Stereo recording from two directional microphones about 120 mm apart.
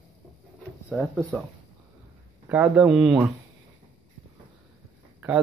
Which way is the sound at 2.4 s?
15° right (ahead or behind).